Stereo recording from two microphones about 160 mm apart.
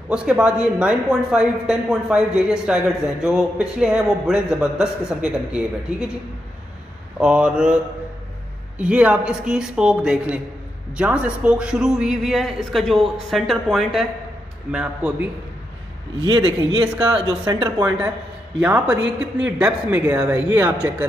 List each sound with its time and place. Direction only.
0.1 s speech: 5° right (ahead or behind)
7.2 s speech: 5° right (ahead or behind)
16.2 s speech: 30° right (ahead or behind)
17.8 s speech: 10° right (ahead or behind)
19.4 s speech: 10° right (ahead or behind)